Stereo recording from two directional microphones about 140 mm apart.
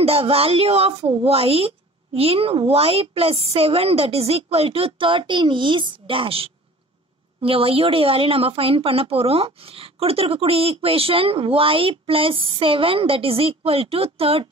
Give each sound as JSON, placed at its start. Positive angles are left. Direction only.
{"t": 0.0, "sound": "a woman's voice", "side_deg": -45}